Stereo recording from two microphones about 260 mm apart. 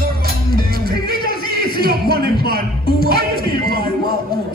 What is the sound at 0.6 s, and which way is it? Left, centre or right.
Music, right.